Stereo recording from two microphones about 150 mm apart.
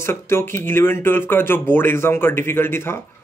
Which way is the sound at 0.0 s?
15° left (ahead or behind).